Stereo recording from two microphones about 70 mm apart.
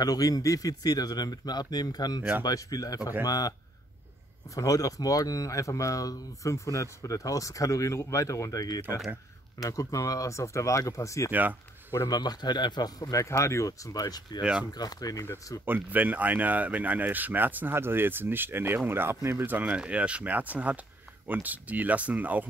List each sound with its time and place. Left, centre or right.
0.0 s a man's voice: left
4.6 s speech: left
12.1 s speech: left
13.2 s speech: left
14.4 s speech: centre
14.7 s a man's voice: left
15.3 s speech: left
15.6 s speech: right
19.4 s speech: right